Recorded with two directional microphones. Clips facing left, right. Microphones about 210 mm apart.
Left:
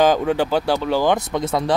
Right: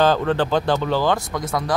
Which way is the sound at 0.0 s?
10° left (ahead or behind).